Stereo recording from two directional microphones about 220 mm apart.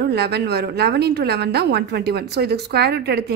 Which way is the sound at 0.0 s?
50° right (ahead or behind).